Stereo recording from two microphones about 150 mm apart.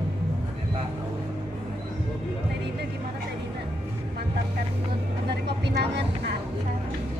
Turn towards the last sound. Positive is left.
turn(degrees=-90)